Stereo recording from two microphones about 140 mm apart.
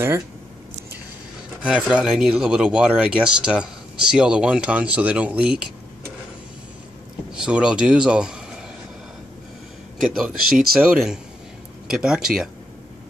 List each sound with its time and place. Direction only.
1.6 s speech: 10° right (ahead or behind)
7.3 s speech: 5° right (ahead or behind)
10.1 s speech: 5° right (ahead or behind)